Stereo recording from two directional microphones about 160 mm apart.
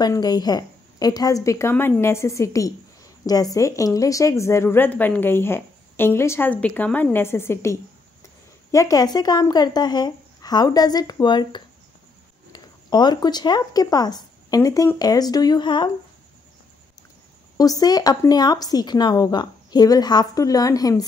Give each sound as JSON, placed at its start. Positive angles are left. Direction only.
{"t": 0.0, "sound": "a woman's voice", "side_deg": 25}
{"t": 17.6, "sound": "a woman's voice", "side_deg": 25}